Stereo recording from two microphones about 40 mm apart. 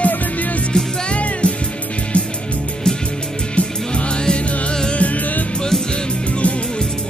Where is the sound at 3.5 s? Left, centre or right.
Left.